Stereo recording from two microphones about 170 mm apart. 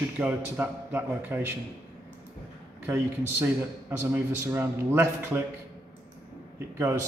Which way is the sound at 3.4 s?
15° right (ahead or behind).